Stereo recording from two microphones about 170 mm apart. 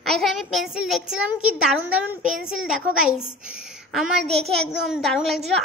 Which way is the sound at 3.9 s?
Centre (ahead or behind).